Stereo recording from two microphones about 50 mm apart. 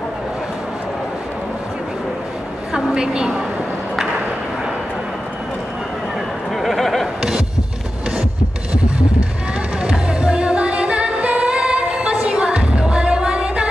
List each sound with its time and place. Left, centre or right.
2.9 s a woman's voice: centre
6.5 s a sound: centre
9.8 s music: right